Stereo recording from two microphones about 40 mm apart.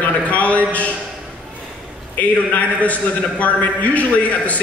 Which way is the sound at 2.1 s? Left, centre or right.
Left.